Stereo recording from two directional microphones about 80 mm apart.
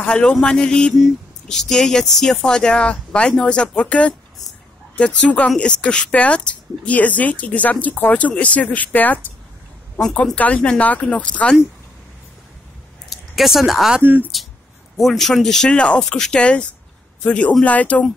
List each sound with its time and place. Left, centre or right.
0.0 s speech: centre
10.3 s speech: centre
13.1 s speech: centre